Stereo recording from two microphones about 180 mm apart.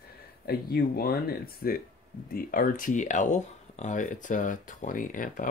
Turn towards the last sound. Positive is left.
turn(degrees=50)  # may be behind; listen again after turning